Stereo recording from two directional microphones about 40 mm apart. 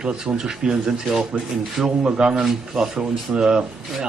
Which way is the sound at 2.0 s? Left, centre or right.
Right.